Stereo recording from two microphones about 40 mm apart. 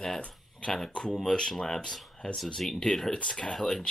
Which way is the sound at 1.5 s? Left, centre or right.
Centre.